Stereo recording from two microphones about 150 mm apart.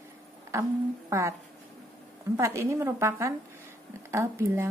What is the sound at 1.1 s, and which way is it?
Speech, 20° right (ahead or behind).